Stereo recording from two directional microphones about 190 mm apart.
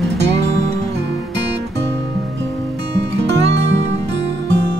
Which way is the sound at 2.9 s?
65° right (ahead or behind).